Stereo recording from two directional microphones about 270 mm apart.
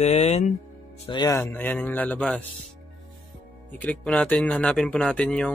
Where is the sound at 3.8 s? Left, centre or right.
Centre.